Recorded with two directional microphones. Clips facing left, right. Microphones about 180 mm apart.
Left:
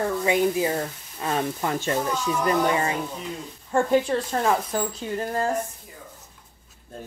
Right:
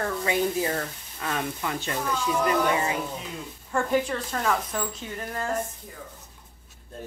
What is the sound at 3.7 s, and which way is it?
Speech, 30° left (ahead or behind).